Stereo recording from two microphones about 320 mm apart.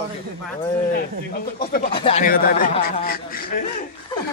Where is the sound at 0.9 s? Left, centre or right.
Left.